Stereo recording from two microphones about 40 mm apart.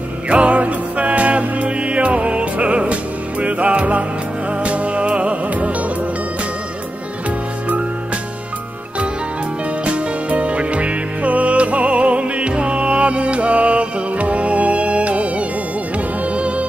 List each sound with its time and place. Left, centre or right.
0.3 s music: right
7.2 s music: right
9.8 s music: right